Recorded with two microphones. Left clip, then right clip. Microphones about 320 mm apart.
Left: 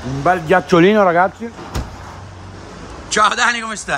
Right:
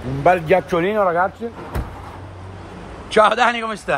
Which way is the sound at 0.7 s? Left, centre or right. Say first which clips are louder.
Left 6 dB; left.